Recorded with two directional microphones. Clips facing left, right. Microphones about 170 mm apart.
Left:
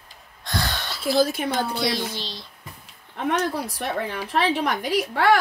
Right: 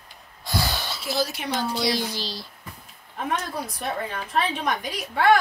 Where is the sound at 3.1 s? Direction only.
75° left (ahead or behind).